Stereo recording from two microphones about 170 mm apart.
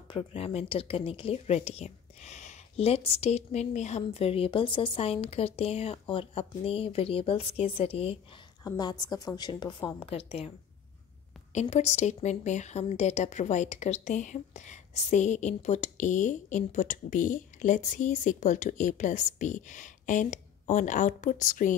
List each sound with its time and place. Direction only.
0.1 s a woman's voice: 35° left (ahead or behind)
11.5 s speech: 40° left (ahead or behind)